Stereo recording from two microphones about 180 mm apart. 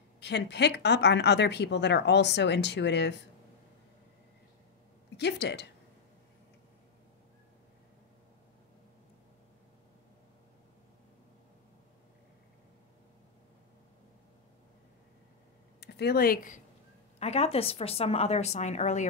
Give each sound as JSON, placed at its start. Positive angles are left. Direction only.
{"t": 0.2, "sound": "speech", "side_deg": 70}
{"t": 5.1, "sound": "speech", "side_deg": 70}
{"t": 15.8, "sound": "speech", "side_deg": 65}
{"t": 17.2, "sound": "speech", "side_deg": 35}